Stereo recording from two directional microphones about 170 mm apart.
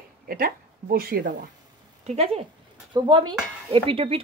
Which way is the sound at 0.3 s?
60° right (ahead or behind).